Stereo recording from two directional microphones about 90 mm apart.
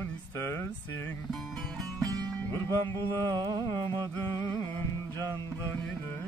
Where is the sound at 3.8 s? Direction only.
60° right (ahead or behind).